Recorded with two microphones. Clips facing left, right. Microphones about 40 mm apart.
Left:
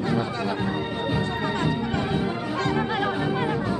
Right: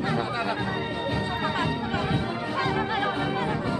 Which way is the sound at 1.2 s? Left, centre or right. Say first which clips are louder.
Even; centre.